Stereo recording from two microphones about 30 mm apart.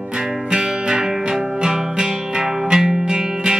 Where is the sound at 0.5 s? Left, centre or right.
Right.